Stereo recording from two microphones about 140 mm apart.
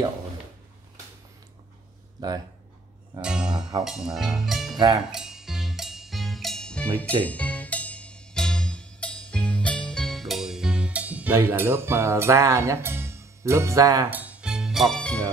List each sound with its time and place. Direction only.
2.1 s speech: 30° right (ahead or behind)
3.2 s speech: 5° right (ahead or behind)
5.1 s music: 5° right (ahead or behind); by 14.0 s 25° right (ahead or behind)
14.1 s music: 10° right (ahead or behind); by 15.2 s 5° left (ahead or behind)